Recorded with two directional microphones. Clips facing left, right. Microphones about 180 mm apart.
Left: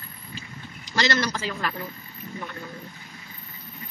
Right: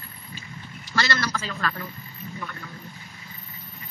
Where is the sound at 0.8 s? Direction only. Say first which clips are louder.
Left 2 dB; 20° left (ahead or behind).